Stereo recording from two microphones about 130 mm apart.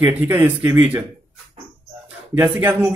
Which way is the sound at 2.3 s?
15° right (ahead or behind).